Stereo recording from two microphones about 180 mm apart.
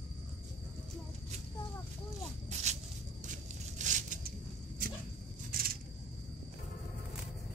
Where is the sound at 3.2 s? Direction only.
45° right (ahead or behind).